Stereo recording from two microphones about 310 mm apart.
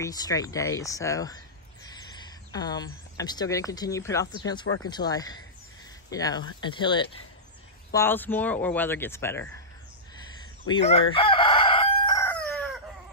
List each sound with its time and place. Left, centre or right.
0.0 s speech: centre
10.7 s chicken: centre